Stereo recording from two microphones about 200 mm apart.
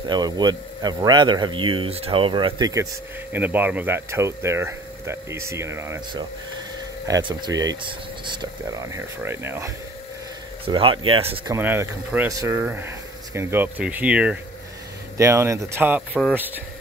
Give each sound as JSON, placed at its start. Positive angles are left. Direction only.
{"t": 0.0, "sound": "a man's voice", "side_deg": -20}
{"t": 10.6, "sound": "a man's voice", "side_deg": -25}
{"t": 11.4, "sound": "speech", "side_deg": -10}